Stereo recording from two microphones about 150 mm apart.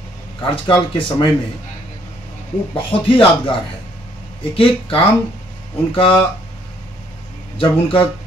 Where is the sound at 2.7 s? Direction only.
35° left (ahead or behind).